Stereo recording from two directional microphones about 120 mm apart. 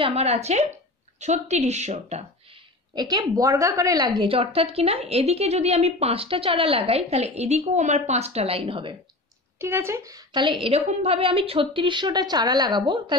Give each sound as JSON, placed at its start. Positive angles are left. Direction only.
{"t": 0.0, "sound": "a woman's voice", "side_deg": -60}
{"t": 2.9, "sound": "a woman's voice", "side_deg": -30}
{"t": 4.3, "sound": "a woman's voice", "side_deg": -55}
{"t": 9.6, "sound": "a woman's voice", "side_deg": -20}
{"t": 10.9, "sound": "a woman's voice", "side_deg": -60}